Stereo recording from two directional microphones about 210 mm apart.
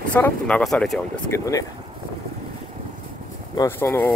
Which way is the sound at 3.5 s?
15° left (ahead or behind).